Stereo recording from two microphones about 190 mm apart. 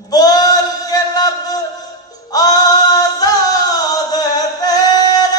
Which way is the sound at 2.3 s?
20° left (ahead or behind).